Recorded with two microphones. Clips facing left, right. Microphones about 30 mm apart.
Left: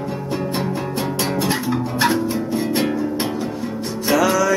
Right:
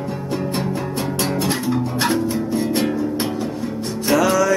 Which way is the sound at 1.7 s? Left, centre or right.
Centre.